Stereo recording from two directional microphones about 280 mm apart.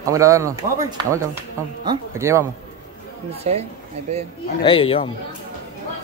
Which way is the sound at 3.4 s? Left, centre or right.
Right.